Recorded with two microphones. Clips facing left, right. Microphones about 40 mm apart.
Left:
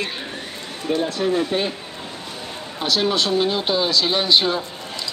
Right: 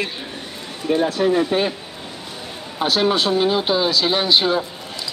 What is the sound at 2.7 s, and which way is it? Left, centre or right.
Speech, centre.